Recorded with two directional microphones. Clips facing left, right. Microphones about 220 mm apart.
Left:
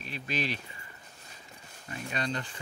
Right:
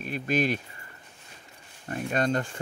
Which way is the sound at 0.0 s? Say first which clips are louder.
Right 8 dB; 50° right (ahead or behind).